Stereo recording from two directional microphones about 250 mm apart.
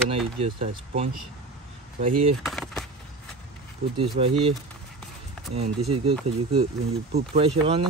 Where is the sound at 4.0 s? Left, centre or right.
Right.